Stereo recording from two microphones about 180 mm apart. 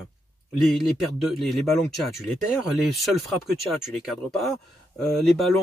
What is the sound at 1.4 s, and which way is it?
Speech, centre (ahead or behind).